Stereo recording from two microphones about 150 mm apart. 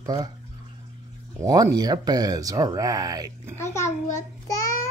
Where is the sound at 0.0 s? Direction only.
25° right (ahead or behind).